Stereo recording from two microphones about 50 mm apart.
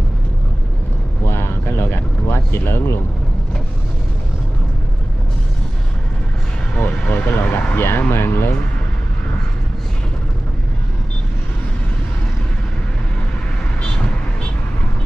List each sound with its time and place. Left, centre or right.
1.2 s a sound: left
6.8 s vehicle: left
8.1 s speech: left